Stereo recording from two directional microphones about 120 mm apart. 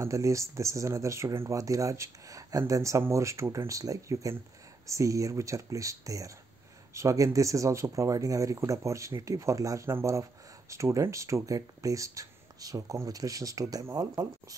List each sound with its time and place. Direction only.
0.0 s speech: 25° right (ahead or behind)